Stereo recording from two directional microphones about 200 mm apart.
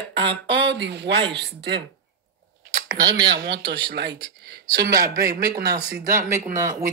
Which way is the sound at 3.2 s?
50° right (ahead or behind).